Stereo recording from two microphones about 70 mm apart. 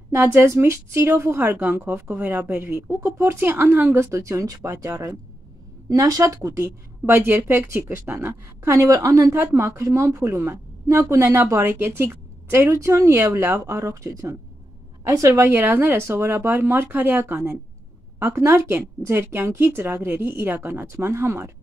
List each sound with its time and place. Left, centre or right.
0.1 s a woman's voice: right
2.9 s a woman's voice: right
7.1 s a woman's voice: right
9.4 s a woman's voice: right
18.2 s a woman's voice: right